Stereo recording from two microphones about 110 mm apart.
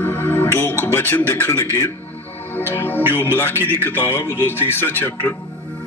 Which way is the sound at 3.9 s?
20° left (ahead or behind).